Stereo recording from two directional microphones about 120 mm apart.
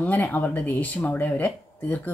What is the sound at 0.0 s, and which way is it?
Speech, 15° left (ahead or behind).